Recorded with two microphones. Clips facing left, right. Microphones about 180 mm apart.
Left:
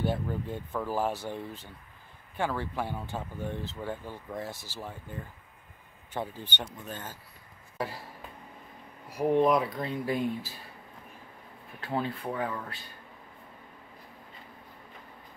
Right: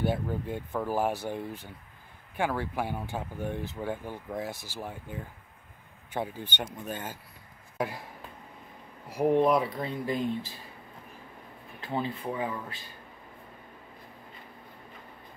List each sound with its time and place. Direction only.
0.0 s speech: 10° right (ahead or behind)
7.7 s a sound: 15° right (ahead or behind)
9.3 s speech: centre (ahead or behind)
11.8 s speech: centre (ahead or behind)